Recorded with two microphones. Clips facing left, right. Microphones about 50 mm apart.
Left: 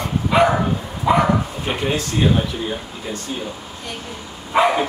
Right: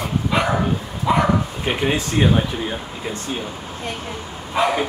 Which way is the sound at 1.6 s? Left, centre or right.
Centre.